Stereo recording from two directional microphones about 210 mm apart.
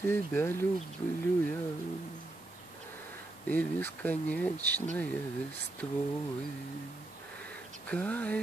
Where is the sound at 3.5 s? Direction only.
10° left (ahead or behind).